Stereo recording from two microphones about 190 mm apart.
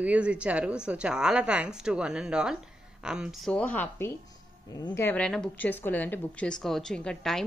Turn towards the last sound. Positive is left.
turn(degrees=5)  # may be behind; listen again after turning